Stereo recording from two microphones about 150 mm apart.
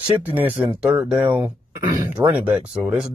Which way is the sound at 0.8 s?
5° right (ahead or behind).